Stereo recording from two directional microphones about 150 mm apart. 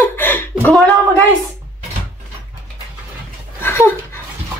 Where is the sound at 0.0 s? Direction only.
15° left (ahead or behind).